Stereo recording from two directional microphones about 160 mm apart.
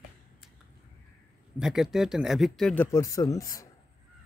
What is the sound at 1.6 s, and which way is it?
Speech, 5° right (ahead or behind).